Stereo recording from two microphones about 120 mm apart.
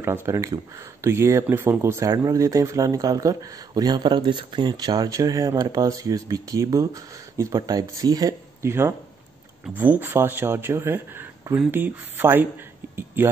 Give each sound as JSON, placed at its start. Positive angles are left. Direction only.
{"t": 0.0, "sound": "speech", "side_deg": -20}
{"t": 8.6, "sound": "speech", "side_deg": -20}
{"t": 12.9, "sound": "a sound", "side_deg": -20}